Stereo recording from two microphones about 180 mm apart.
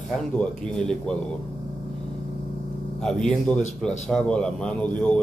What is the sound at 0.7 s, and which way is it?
Speech, 5° left (ahead or behind).